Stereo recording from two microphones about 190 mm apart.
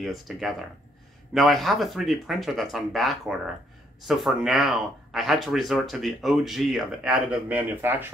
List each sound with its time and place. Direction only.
0.0 s speech: centre (ahead or behind)